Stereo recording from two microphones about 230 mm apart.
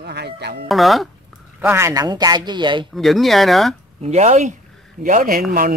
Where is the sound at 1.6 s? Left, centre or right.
Centre.